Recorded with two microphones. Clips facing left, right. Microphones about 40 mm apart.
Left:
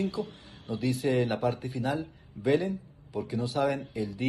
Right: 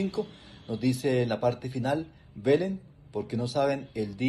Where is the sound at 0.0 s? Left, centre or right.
Right.